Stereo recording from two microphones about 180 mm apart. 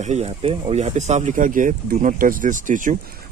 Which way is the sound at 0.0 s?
35° right (ahead or behind).